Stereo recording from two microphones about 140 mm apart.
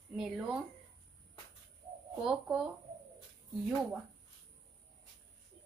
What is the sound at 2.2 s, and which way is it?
Speech, 5° right (ahead or behind).